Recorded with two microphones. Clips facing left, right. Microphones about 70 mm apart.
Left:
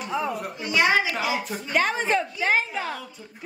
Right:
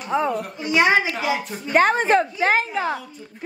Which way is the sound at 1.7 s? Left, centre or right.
Right.